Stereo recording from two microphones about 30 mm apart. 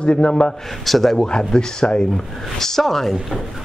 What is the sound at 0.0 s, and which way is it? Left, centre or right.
Speech, left.